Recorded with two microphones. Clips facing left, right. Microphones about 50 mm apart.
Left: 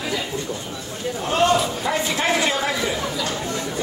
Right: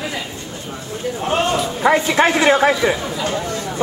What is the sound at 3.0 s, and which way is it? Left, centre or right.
Chatter, right.